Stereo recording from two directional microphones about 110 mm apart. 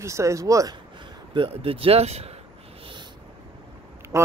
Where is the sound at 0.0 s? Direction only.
25° right (ahead or behind).